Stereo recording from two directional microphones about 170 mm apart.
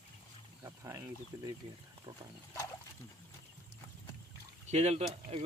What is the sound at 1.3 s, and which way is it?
Speech, 15° right (ahead or behind).